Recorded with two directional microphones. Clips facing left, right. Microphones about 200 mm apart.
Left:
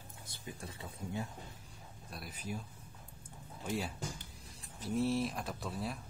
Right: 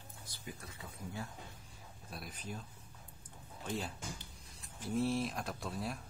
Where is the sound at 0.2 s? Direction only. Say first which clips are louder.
Left 2 dB; 25° left (ahead or behind).